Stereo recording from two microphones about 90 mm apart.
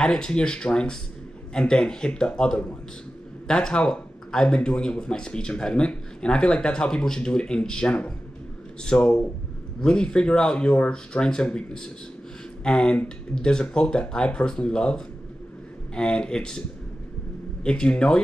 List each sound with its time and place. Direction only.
0.0 s a man's voice: 5° left (ahead or behind)
17.6 s a man's voice: 10° left (ahead or behind)